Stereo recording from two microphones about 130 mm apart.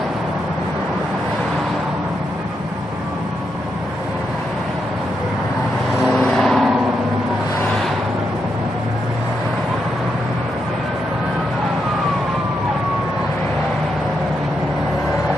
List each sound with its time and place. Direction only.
6.1 s vehicle: centre (ahead or behind)